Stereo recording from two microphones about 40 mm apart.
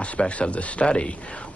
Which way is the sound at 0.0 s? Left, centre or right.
Left.